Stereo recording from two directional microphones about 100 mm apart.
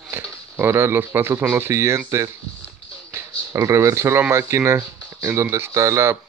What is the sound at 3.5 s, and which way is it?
Speech, 30° right (ahead or behind).